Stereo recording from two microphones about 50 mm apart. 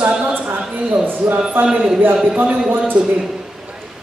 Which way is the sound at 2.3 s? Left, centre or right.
Right.